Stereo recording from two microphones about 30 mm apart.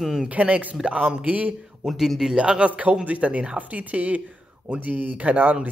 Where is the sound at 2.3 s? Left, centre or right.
Right.